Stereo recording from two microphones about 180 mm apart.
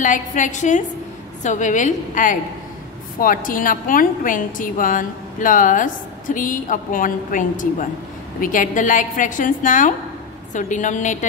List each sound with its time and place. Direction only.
0.0 s a woman's voice: 45° left (ahead or behind)